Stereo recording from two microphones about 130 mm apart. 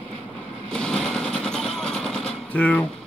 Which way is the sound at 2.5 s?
10° left (ahead or behind).